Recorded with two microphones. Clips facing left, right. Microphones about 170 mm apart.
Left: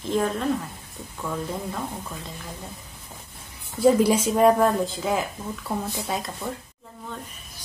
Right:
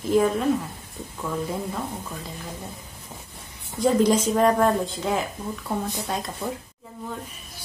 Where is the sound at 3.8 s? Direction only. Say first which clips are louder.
Left 1 dB; 10° left (ahead or behind).